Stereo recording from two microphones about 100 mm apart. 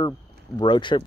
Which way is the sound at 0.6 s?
50° left (ahead or behind).